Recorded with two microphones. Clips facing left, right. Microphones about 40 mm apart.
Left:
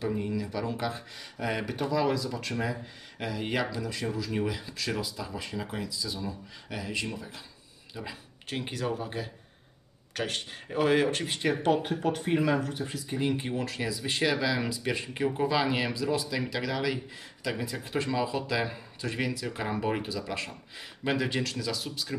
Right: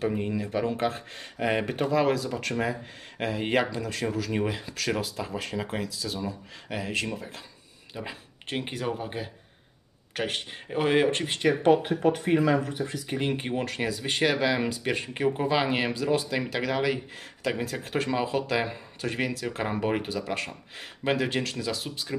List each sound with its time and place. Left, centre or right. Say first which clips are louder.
0.1 s speech: right 3 dB; right
5.7 s speech: right 3 dB; right
6.7 s speech: right 4 dB; right
7.2 s speech: right 2 dB; right
7.9 s speech: right 3 dB; right
11.4 s speech: right 5 dB; centre
13.0 s speech: left 1 dB; right
17.2 s speech: right 4 dB; right
18.1 s speech: right 3 dB; right
21.0 s speech: right 2 dB; right